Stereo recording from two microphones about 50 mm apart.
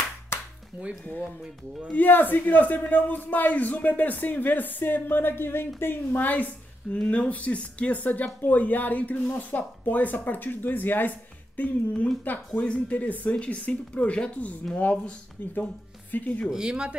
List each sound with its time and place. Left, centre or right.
1.9 s a man's voice: left
6.9 s a man's voice: left
15.5 s a woman's voice: left
16.4 s speech: centre